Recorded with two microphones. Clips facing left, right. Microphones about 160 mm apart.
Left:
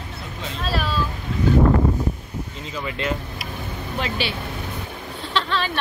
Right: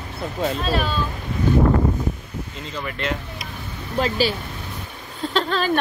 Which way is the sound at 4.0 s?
40° right (ahead or behind).